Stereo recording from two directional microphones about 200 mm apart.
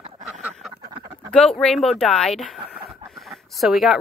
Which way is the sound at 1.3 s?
5° left (ahead or behind).